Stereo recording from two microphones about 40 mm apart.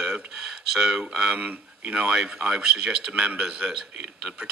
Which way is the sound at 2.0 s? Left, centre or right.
Right.